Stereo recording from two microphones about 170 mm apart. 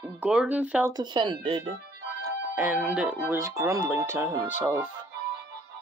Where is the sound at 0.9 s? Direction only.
25° right (ahead or behind).